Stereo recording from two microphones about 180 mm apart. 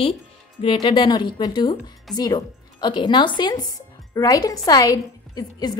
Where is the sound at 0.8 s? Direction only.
25° left (ahead or behind).